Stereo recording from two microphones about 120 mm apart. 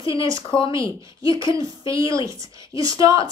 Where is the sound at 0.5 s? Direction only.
5° left (ahead or behind).